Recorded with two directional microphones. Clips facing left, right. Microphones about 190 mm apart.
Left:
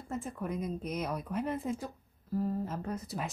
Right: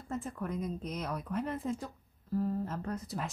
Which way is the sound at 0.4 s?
10° left (ahead or behind).